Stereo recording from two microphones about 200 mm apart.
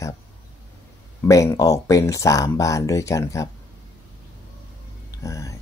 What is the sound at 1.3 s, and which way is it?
Speech, 15° left (ahead or behind).